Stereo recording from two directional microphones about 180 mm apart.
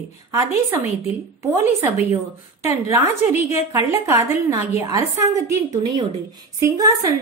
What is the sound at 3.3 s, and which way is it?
Speech, 40° left (ahead or behind).